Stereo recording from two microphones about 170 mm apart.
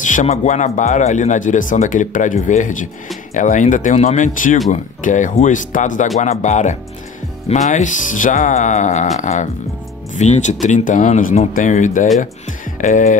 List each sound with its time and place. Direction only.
0.0 s speech: 45° left (ahead or behind)